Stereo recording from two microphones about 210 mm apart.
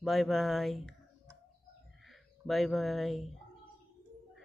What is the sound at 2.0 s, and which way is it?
Speech, centre (ahead or behind).